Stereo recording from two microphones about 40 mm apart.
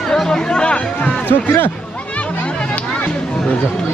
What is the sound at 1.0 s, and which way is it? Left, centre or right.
Speech, left.